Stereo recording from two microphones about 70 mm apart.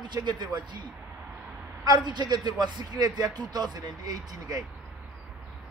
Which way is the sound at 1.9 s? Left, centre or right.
Right.